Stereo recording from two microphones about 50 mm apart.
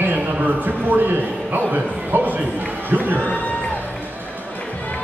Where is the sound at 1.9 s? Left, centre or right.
Right.